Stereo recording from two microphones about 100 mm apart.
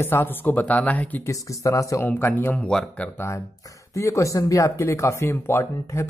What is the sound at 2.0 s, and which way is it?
Speech, 20° left (ahead or behind).